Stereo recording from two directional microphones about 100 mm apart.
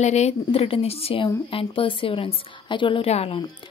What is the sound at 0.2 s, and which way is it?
A woman's voice, 75° left (ahead or behind).